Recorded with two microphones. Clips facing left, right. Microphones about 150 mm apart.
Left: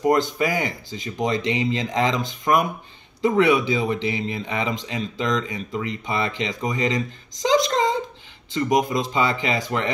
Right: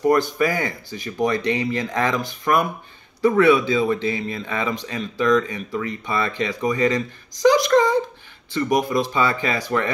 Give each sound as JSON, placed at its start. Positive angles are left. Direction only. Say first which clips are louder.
{"t": 0.0, "sound": "speech", "louder": "right 2 dB", "side_deg": 20}